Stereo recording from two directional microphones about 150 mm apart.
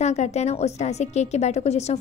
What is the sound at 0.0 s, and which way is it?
A woman's voice, 50° left (ahead or behind).